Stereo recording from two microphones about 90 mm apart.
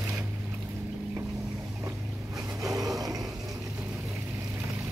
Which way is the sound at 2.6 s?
40° right (ahead or behind).